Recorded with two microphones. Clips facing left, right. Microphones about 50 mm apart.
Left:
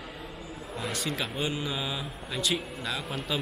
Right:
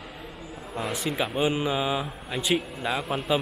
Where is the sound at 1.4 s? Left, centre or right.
Right.